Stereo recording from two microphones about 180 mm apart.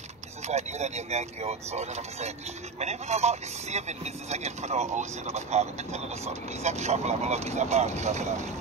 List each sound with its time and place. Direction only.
0.5 s speech: 40° right (ahead or behind)